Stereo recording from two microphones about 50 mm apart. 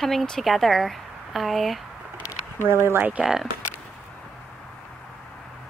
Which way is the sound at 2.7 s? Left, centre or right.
Right.